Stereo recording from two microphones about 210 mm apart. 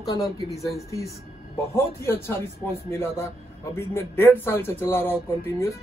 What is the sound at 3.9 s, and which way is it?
Speech, 10° left (ahead or behind).